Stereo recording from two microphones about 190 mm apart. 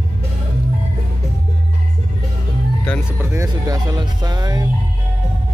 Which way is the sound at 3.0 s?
10° right (ahead or behind).